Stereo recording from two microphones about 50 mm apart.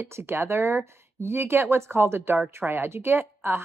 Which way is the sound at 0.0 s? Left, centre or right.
Right.